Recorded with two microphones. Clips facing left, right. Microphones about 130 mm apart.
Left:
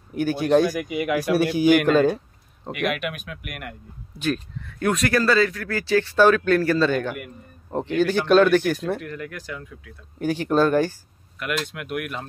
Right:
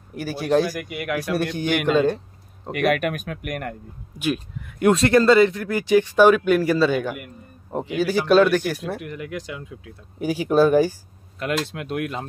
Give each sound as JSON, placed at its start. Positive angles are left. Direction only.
{"t": 0.1, "sound": "a man's voice", "side_deg": 0}
{"t": 2.7, "sound": "speech", "side_deg": -45}
{"t": 4.1, "sound": "speech", "side_deg": -10}
{"t": 4.9, "sound": "a man's voice", "side_deg": -25}
{"t": 9.0, "sound": "speech", "side_deg": -15}
{"t": 10.1, "sound": "speech", "side_deg": -10}
{"t": 11.3, "sound": "speech", "side_deg": -30}